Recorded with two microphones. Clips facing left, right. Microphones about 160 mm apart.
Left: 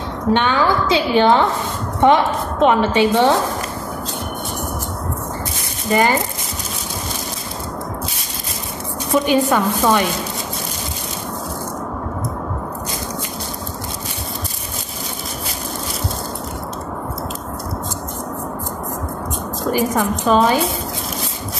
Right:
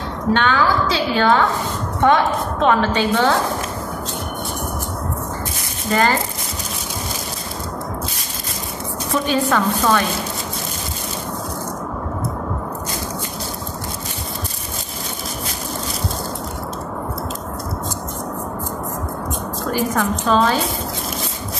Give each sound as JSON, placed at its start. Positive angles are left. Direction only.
{"t": 0.3, "sound": "a woman's voice", "side_deg": 20}
{"t": 5.9, "sound": "speech", "side_deg": 15}
{"t": 9.1, "sound": "chopping", "side_deg": 15}
{"t": 19.7, "sound": "chopping", "side_deg": 15}